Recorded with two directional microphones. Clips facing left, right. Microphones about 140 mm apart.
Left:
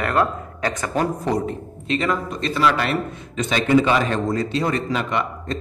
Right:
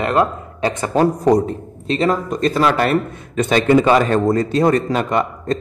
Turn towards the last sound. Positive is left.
turn(degrees=-40)  # may be behind; listen again after turning